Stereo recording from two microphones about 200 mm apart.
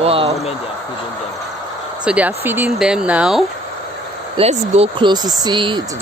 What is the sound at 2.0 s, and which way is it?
Speech, 5° right (ahead or behind).